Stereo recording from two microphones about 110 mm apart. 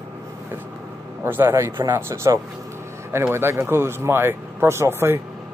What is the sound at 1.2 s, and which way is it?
Speech, 20° right (ahead or behind).